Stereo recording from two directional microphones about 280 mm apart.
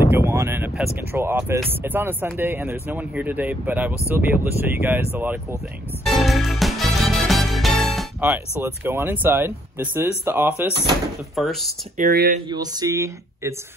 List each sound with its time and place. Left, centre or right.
0.1 s a sound: centre
1.1 s speech: centre
6.0 s music: centre
11.3 s speech: centre
12.0 s speech: right
12.4 s speech: centre